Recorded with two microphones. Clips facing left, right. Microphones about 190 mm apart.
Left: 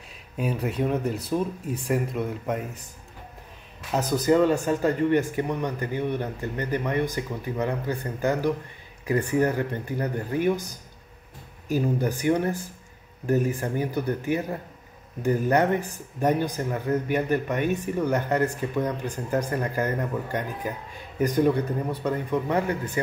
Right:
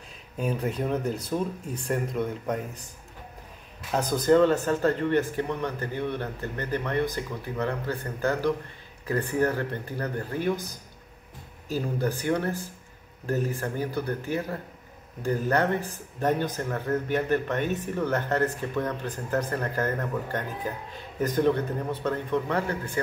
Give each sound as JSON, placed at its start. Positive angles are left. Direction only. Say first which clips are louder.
{"t": 0.4, "sound": "speech", "louder": "left 2 dB", "side_deg": 5}
{"t": 3.9, "sound": "speech", "louder": "even", "side_deg": 5}